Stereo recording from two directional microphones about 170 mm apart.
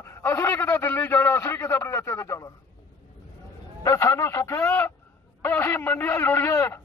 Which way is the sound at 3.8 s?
15° left (ahead or behind).